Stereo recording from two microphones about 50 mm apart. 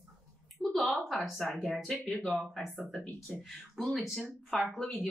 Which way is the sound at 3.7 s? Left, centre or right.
Centre.